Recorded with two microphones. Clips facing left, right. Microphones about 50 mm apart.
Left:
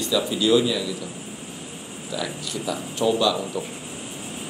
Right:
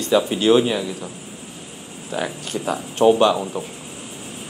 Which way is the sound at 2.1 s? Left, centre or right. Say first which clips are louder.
Right 4 dB; right.